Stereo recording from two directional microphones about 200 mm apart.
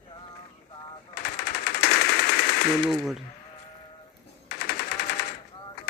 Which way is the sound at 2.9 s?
Centre (ahead or behind).